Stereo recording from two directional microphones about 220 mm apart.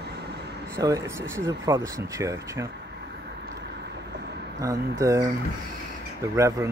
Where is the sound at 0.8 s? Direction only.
15° right (ahead or behind).